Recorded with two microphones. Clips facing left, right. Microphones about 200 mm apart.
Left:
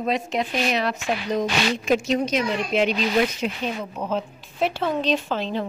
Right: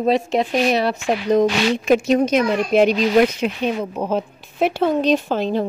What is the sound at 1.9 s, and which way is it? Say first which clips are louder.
A woman's voice: right 7 dB; 55° right (ahead or behind).